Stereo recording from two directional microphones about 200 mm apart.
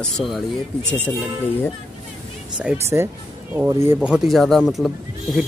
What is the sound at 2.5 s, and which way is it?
Speech, 5° right (ahead or behind).